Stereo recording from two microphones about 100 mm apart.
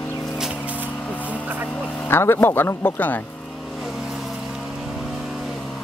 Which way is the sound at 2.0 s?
25° left (ahead or behind).